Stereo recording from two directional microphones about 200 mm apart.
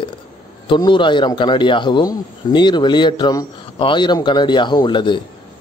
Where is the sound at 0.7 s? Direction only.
25° left (ahead or behind).